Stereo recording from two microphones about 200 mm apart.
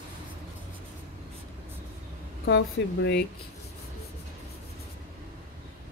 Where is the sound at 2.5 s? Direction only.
60° left (ahead or behind).